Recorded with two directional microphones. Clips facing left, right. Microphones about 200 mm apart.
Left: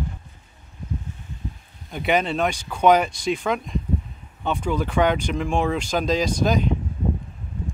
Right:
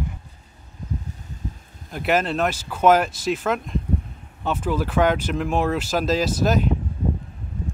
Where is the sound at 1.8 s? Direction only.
Centre (ahead or behind).